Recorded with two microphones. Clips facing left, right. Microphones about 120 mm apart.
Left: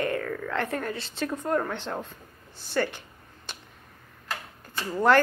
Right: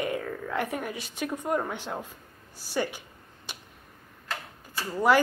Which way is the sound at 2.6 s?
10° right (ahead or behind).